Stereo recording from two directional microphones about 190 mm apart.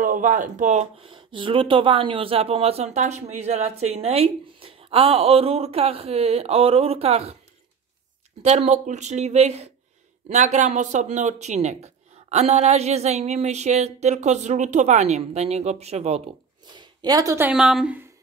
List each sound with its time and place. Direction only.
0.0 s speech: 45° right (ahead or behind)
8.4 s speech: 35° right (ahead or behind)
16.7 s a woman's voice: 20° right (ahead or behind)
17.5 s a woman's voice: centre (ahead or behind)